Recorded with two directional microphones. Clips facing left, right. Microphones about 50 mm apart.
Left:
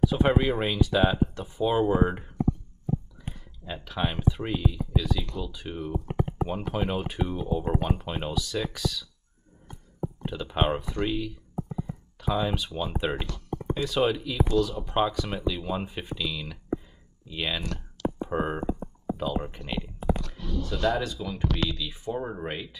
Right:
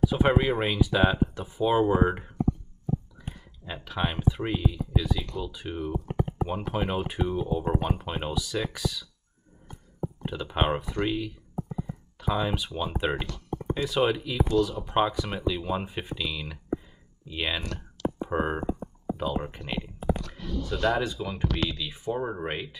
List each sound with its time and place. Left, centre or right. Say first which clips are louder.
0.1 s speech: even; centre
3.6 s speech: even; centre
10.2 s speech: even; centre